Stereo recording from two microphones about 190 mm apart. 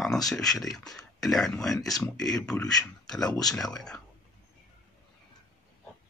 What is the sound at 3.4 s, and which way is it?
Speech, centre (ahead or behind).